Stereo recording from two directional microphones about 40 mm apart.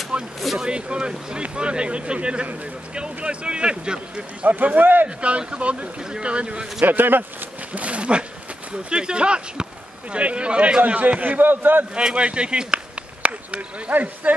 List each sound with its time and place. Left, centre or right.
0.1 s a sound: right
0.6 s speech: right
4.5 s a man's voice: right
5.0 s a man's voice: right
6.0 s speech: centre
6.8 s a man's voice: right
7.7 s speech: right
11.0 s a man's voice: right
11.9 s speech: right
13.9 s a man's voice: right